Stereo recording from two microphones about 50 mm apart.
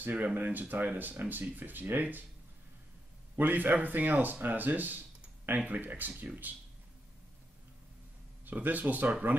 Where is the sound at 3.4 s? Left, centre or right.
Right.